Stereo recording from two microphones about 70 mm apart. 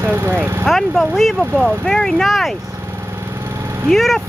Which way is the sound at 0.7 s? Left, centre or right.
Centre.